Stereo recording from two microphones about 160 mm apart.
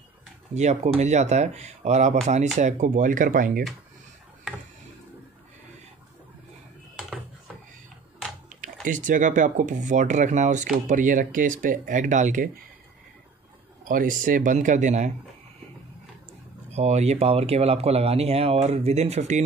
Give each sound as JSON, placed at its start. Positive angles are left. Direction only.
{"t": 0.6, "sound": "speech", "side_deg": -45}
{"t": 8.8, "sound": "speech", "side_deg": -55}
{"t": 13.8, "sound": "speech", "side_deg": -60}
{"t": 16.7, "sound": "speech", "side_deg": -45}